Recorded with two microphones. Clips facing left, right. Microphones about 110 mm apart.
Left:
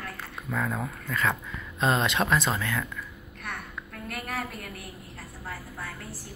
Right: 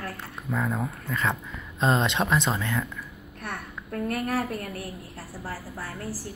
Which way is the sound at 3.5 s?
40° right (ahead or behind).